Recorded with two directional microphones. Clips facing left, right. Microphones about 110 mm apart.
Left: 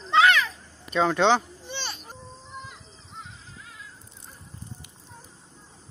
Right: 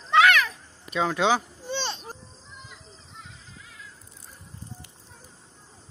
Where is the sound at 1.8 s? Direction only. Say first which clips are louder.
Right 5 dB; 30° right (ahead or behind).